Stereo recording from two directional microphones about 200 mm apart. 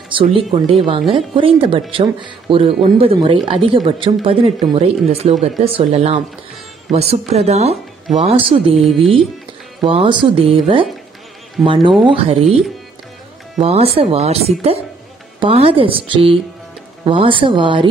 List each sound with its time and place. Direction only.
0.1 s speech: 25° right (ahead or behind)
13.6 s speech: 30° right (ahead or behind)